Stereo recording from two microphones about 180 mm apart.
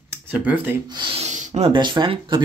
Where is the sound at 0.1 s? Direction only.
10° right (ahead or behind).